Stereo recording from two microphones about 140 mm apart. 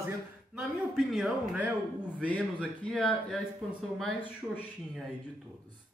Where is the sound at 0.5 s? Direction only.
5° right (ahead or behind).